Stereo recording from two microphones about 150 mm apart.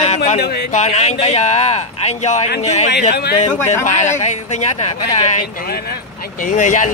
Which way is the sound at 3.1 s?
90° left.